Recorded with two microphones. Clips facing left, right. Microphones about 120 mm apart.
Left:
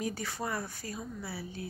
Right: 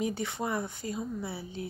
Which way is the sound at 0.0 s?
20° right (ahead or behind).